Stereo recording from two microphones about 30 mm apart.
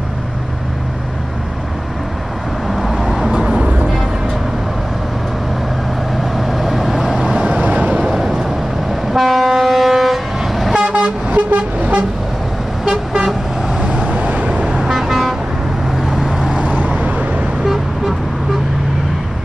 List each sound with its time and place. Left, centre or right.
2.7 s vehicle: centre
3.3 s vehicle: right
6.3 s vehicle: centre
7.7 s vehicle: right
8.1 s vehicle: centre
9.1 s train: centre
9.5 s vehicle: centre
11.2 s vehicle: right
12.8 s vehicle: centre
13.9 s vehicle: right
14.8 s vehicle: centre
16.5 s vehicle: right